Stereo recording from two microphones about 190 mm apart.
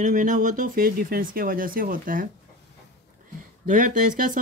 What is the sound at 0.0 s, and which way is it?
Speech, 45° right (ahead or behind).